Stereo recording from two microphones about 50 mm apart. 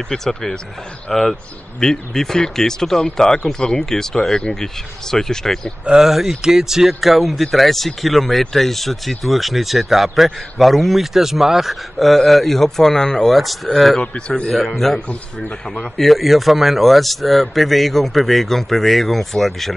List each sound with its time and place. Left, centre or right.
0.1 s speech: centre
6.0 s speech: centre
14.1 s speech: centre
15.0 s speech: left
16.0 s speech: centre